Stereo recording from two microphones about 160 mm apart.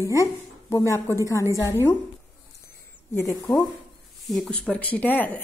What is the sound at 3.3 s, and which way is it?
A woman's voice, 10° left (ahead or behind).